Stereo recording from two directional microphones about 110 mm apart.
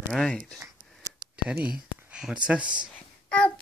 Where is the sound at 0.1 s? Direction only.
5° left (ahead or behind).